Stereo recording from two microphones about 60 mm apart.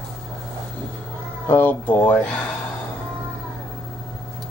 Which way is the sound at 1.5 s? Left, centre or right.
Left.